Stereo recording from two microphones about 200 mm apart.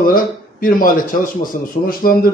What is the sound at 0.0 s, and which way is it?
A man's voice, 45° left (ahead or behind).